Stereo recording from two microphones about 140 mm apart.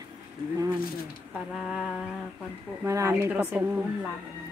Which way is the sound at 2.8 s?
20° right (ahead or behind).